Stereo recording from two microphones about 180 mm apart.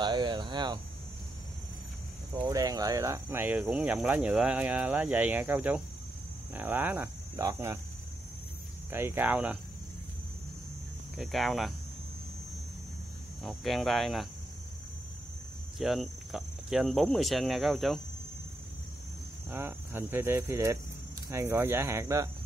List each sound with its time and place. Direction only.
0.0 s a sound: 25° right (ahead or behind)
2.3 s speech: 20° right (ahead or behind)
8.9 s speech: 10° right (ahead or behind)
11.1 s speech: centre (ahead or behind)
13.4 s speech: centre (ahead or behind)
15.8 s speech: centre (ahead or behind)
19.5 s speech: 15° right (ahead or behind)